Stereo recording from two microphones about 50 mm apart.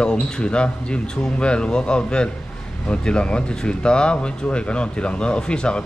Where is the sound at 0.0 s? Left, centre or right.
Centre.